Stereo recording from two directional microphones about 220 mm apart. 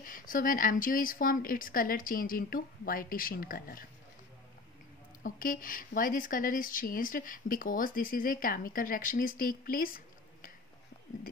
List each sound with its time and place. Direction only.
0.0 s speech: 40° left (ahead or behind)
5.2 s speech: 40° left (ahead or behind)